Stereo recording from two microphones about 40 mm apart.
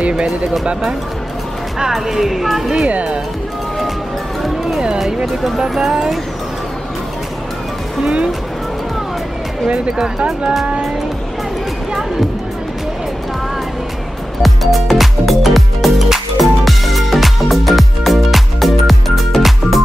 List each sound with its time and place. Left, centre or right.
0.2 s speech: right
1.9 s a woman's voice: centre
2.9 s speech: right
4.7 s speech: centre
8.0 s speech: right
9.7 s speech: centre
14.4 s music: centre